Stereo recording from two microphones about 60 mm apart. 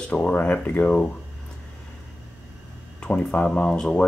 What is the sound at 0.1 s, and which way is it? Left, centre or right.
Speech, left.